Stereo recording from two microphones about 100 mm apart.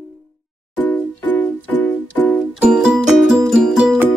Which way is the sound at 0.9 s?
15° left (ahead or behind).